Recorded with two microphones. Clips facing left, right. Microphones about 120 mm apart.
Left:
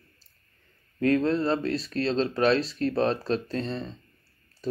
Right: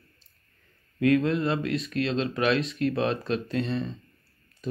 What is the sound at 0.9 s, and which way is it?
Speech, 35° left (ahead or behind).